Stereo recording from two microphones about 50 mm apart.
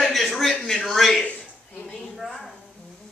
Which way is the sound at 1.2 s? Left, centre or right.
Left.